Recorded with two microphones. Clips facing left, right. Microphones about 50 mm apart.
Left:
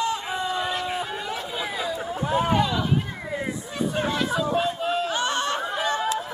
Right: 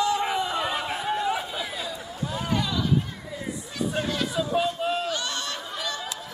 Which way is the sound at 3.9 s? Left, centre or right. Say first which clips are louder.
Left 3 dB; centre.